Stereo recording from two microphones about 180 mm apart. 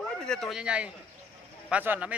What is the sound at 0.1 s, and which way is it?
A man's voice, 5° left (ahead or behind).